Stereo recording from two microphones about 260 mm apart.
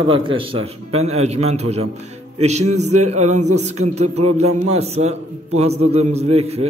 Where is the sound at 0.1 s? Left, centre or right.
Centre.